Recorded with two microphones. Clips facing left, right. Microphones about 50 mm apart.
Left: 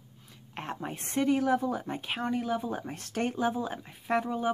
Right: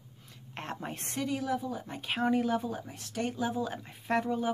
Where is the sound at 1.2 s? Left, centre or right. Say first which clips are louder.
Left 6 dB; left.